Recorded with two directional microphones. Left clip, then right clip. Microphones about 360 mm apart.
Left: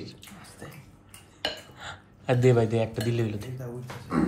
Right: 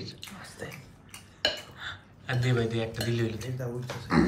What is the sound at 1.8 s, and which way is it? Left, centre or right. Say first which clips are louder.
Speech: even; centre.